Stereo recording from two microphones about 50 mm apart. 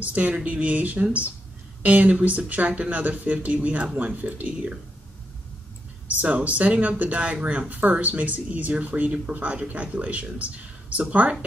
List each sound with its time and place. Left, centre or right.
0.0 s speech: right
6.0 s speech: right